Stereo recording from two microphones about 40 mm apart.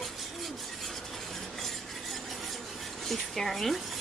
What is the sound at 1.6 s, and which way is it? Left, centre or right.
Stir, centre.